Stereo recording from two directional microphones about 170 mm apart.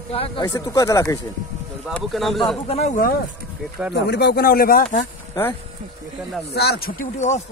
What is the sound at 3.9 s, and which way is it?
Speech, 75° left (ahead or behind).